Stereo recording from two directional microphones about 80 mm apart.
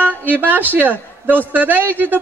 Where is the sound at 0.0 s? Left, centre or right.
Right.